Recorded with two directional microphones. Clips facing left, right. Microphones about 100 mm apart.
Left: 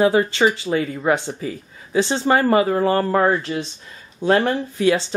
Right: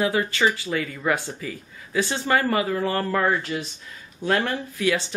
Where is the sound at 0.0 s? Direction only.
30° left (ahead or behind).